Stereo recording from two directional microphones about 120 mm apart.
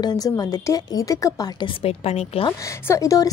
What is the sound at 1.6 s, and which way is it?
Speech, 60° left (ahead or behind).